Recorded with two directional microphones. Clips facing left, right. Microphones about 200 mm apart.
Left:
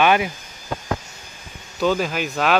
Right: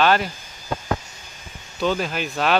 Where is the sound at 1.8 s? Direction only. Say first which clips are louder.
Left 2 dB; 5° left (ahead or behind).